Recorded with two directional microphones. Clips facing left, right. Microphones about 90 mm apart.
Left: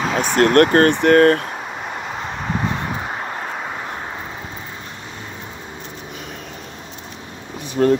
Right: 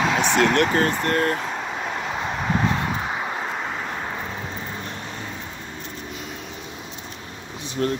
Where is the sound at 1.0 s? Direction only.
70° left (ahead or behind).